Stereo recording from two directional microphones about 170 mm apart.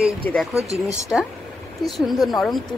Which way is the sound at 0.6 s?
20° left (ahead or behind).